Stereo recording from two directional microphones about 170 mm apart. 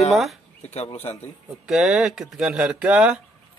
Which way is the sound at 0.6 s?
40° left (ahead or behind).